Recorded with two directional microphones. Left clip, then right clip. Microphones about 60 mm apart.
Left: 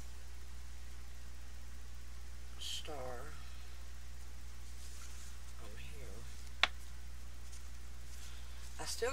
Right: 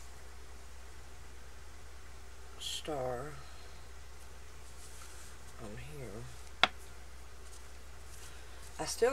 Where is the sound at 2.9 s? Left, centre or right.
Left.